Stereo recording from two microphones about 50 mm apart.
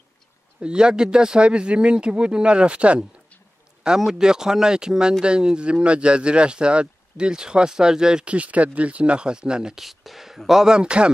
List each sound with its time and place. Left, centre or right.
0.6 s speech: centre
3.8 s speech: centre
8.3 s speech: right
9.8 s speech: centre